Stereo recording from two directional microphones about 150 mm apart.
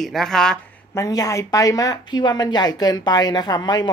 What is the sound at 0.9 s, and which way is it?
Speech, 20° left (ahead or behind).